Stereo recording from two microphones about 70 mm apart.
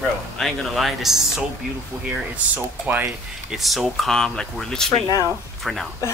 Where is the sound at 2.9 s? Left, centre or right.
Right.